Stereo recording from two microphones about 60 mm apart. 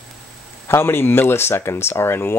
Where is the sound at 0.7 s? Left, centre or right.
Left.